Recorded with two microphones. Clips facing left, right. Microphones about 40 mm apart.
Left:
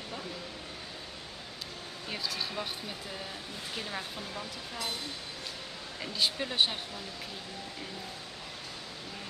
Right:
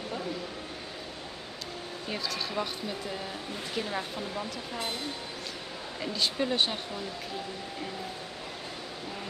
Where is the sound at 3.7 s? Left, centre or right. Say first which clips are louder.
Right 5 dB; centre.